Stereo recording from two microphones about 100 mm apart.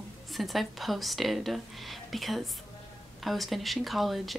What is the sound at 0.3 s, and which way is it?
Speech, centre (ahead or behind).